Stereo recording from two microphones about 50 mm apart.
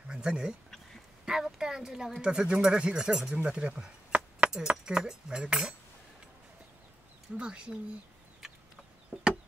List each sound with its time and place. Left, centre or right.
0.1 s speech: centre
3.4 s keys jangling: right
4.6 s speech: centre
7.3 s speech: centre
9.1 s chop: right